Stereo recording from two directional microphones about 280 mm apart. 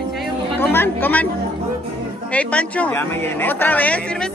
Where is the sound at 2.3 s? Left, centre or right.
Centre.